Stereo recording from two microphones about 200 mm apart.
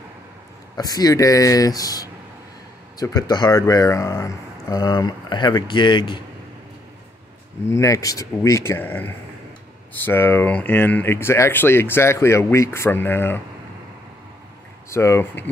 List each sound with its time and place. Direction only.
0.7 s speech: 20° left (ahead or behind)
7.6 s speech: 15° left (ahead or behind)
14.9 s speech: 15° left (ahead or behind)